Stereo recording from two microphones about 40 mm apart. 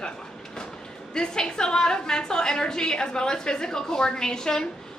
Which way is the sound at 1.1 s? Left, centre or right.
Centre.